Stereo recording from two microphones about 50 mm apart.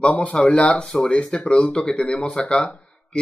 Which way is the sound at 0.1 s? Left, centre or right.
Left.